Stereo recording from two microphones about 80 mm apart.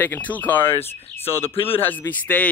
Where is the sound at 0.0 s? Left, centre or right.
Centre.